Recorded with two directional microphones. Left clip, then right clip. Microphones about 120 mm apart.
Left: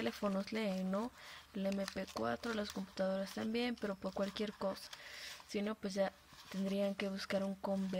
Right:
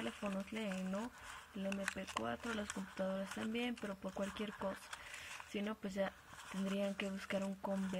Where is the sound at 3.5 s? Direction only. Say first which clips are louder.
Left 5 dB; 45° left (ahead or behind).